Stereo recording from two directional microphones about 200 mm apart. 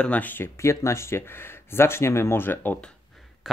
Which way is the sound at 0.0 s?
5° left (ahead or behind).